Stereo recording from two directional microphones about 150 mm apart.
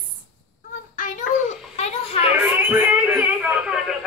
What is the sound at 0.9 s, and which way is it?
Child singing, 55° left (ahead or behind).